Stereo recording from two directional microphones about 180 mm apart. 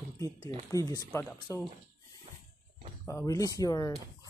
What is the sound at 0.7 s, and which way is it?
Speech, 20° left (ahead or behind).